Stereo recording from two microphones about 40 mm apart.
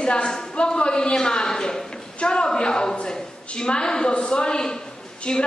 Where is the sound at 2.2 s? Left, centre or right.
Left.